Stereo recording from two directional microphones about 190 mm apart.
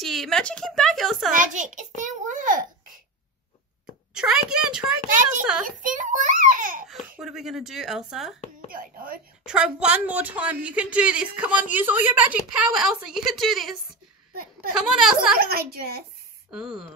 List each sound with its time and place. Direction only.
0.0 s speech: centre (ahead or behind)
1.3 s a child's voice: 40° right (ahead or behind)
2.0 s babbling: 40° right (ahead or behind)
4.1 s speech: 5° right (ahead or behind)
5.8 s a child's voice: 45° right (ahead or behind)
6.9 s speech: centre (ahead or behind)
8.6 s a child's voice: 50° right (ahead or behind)
9.4 s speech: 5° right (ahead or behind)
15.3 s a woman's voice: 55° right (ahead or behind)
16.4 s speech: 5° right (ahead or behind)